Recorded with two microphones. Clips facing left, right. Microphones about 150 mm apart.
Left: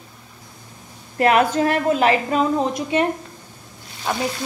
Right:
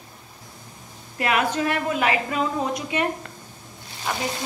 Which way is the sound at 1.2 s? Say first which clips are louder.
Left 6 dB; 40° left (ahead or behind).